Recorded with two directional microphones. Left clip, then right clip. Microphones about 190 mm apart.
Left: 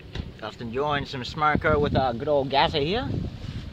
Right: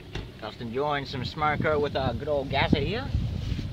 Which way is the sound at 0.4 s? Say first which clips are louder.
Left 2 dB; 10° left (ahead or behind).